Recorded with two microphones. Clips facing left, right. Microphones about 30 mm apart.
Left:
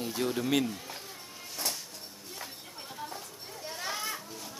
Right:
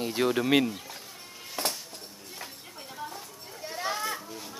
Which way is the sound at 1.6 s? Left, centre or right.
Right.